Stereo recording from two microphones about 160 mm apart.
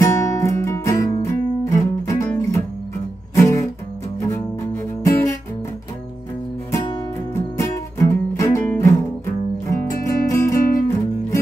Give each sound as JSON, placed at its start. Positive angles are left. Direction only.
{"t": 0.0, "sound": "music", "side_deg": 20}
{"t": 7.5, "sound": "music", "side_deg": 20}